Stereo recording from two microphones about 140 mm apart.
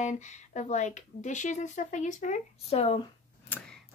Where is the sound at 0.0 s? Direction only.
60° left (ahead or behind).